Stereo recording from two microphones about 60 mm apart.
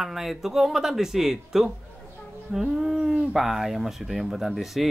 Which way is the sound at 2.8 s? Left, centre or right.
Centre.